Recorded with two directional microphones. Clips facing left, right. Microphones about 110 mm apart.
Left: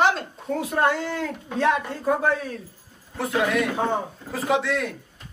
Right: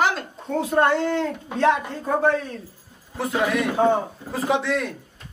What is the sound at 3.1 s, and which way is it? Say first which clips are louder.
A woman's voice: even; 5° right (ahead or behind).